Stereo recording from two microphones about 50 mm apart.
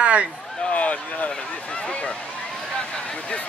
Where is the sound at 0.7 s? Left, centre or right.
Left.